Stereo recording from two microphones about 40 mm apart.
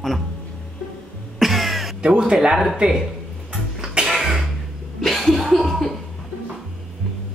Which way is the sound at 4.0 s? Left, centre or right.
Centre.